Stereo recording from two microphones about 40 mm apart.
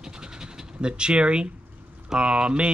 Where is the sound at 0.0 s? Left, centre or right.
Centre.